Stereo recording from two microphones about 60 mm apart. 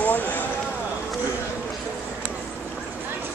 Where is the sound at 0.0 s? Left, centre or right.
Left.